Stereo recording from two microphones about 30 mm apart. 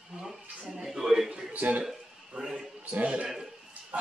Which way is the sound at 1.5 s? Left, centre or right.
Right.